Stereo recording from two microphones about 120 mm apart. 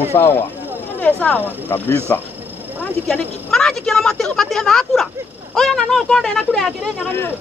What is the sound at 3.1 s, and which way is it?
A woman's voice, 5° left (ahead or behind).